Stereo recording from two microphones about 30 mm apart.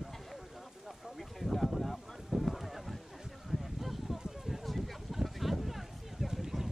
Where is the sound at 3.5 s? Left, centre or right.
Centre.